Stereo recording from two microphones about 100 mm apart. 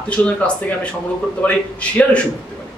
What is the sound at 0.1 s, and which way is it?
Speech, 15° left (ahead or behind).